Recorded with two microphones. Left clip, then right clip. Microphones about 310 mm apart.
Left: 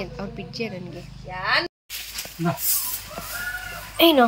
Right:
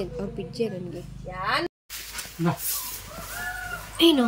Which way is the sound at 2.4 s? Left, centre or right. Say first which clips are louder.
Left 1 dB; centre.